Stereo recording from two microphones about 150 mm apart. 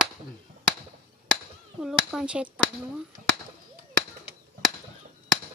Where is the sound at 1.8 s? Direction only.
5° right (ahead or behind).